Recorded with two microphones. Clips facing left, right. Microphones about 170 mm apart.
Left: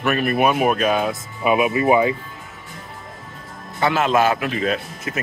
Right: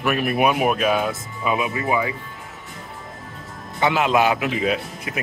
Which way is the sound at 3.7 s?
15° right (ahead or behind).